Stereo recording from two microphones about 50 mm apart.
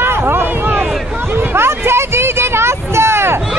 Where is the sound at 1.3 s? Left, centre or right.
Right.